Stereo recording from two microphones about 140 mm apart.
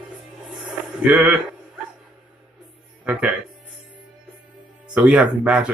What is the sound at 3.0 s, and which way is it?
Speech, 5° right (ahead or behind).